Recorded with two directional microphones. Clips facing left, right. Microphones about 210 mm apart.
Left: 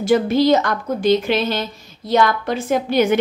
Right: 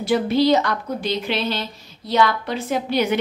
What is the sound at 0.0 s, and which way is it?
A woman's voice, 45° left (ahead or behind).